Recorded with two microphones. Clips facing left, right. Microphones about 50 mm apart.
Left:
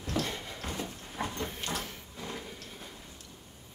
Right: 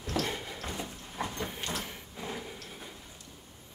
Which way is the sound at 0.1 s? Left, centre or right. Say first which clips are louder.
Right 1 dB; centre.